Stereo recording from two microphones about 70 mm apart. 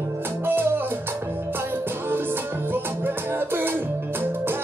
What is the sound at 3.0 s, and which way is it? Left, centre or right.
Music, right.